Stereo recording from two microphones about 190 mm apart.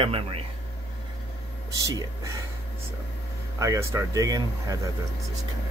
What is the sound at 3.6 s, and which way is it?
Speech, 15° right (ahead or behind).